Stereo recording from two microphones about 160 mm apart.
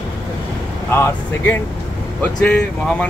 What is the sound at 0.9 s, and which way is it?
Speech, 15° left (ahead or behind).